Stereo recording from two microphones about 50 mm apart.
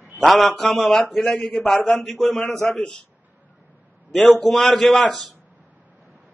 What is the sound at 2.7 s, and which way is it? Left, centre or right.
Speech, centre.